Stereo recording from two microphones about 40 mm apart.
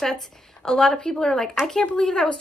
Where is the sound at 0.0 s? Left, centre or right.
Centre.